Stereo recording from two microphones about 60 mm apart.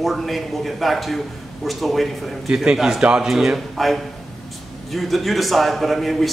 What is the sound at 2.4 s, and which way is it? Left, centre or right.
Speech, centre.